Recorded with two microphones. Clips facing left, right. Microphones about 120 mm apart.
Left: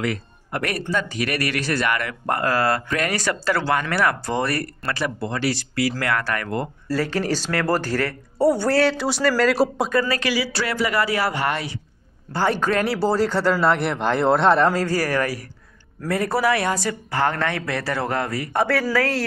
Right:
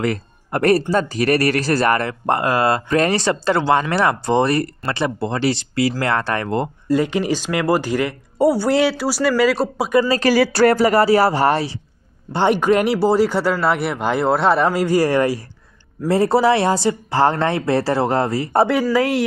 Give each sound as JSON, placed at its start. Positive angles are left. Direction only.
{"t": 0.0, "sound": "speech", "side_deg": -40}
{"t": 9.8, "sound": "speech", "side_deg": -20}
{"t": 10.1, "sound": "speech", "side_deg": -40}
{"t": 12.3, "sound": "speech", "side_deg": -20}
{"t": 18.9, "sound": "speech", "side_deg": -15}